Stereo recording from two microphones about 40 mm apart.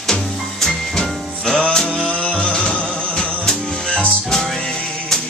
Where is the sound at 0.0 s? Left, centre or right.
Centre.